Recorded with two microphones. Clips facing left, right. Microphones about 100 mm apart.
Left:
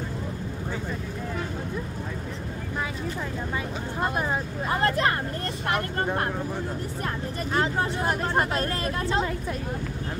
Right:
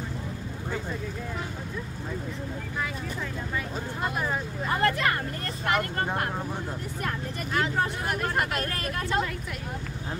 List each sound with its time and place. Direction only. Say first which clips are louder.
4.0 s speech: left 3 dB; 30° left (ahead or behind)
7.5 s speech: left 1 dB; 30° left (ahead or behind)